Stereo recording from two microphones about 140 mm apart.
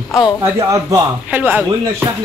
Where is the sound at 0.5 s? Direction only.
20° right (ahead or behind).